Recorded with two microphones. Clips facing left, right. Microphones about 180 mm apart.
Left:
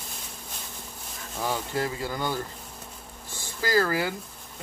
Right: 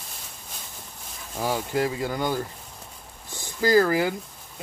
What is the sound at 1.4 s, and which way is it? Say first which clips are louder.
Speech: right 4 dB; 15° right (ahead or behind).